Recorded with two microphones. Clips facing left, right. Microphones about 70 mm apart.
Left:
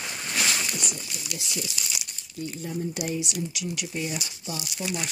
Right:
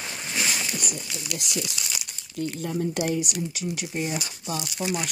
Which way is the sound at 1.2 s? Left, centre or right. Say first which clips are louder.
Right 3 dB; right.